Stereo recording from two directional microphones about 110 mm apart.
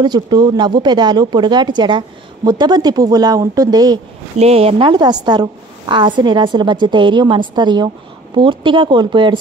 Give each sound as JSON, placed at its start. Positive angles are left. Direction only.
{"t": 0.0, "sound": "speech", "side_deg": -40}
{"t": 4.4, "sound": "a woman's voice", "side_deg": -65}